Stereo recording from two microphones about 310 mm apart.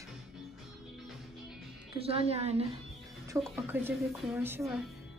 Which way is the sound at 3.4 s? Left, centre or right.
Centre.